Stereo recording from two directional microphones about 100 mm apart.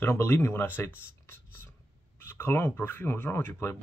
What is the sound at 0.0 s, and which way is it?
Speech, 25° left (ahead or behind).